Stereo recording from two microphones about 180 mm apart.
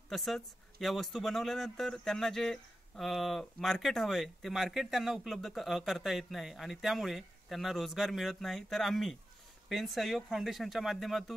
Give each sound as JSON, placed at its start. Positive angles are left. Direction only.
{"t": 0.1, "sound": "speech", "side_deg": 0}